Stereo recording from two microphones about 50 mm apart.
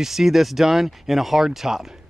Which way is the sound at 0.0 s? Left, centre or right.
Centre.